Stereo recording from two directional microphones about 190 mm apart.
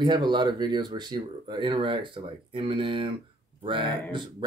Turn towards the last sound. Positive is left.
turn(degrees=-25)  # may be behind; listen again after turning